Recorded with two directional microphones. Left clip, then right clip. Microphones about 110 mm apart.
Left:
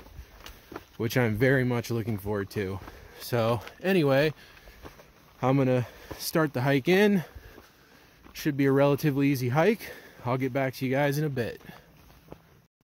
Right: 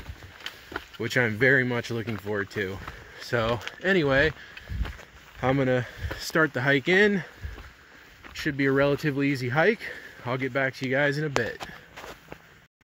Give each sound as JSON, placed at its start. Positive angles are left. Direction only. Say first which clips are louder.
{"t": 0.9, "sound": "speech", "louder": "right 2 dB", "side_deg": 90}
{"t": 5.4, "sound": "speech", "louder": "right 1 dB", "side_deg": 80}
{"t": 8.6, "sound": "speech", "louder": "even", "side_deg": 90}